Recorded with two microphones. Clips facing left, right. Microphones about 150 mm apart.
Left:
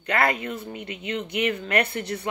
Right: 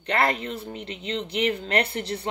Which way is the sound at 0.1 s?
30° right (ahead or behind).